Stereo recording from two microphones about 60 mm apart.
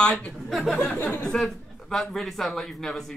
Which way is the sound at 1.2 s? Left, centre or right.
Centre.